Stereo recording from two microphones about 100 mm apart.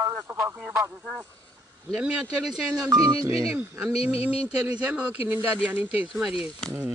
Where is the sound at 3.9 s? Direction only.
85° left.